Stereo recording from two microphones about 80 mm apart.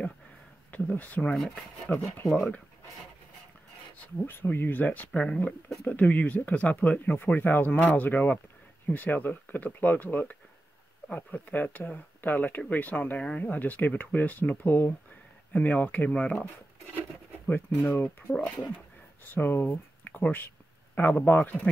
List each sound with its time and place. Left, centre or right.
0.7 s speech: centre
4.0 s speech: left
17.5 s speech: left
19.3 s speech: left